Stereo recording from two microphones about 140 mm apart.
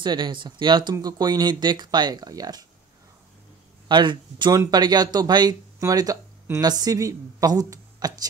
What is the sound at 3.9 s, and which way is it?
A woman's voice, 35° right (ahead or behind).